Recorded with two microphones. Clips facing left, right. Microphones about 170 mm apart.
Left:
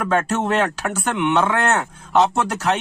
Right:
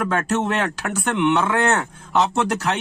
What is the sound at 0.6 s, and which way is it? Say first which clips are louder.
Speech: left 3 dB; 15° left (ahead or behind).